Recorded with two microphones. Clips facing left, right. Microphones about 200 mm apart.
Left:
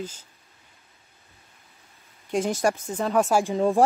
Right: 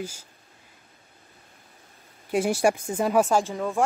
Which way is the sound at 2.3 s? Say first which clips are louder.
Right 2 dB; 10° right (ahead or behind).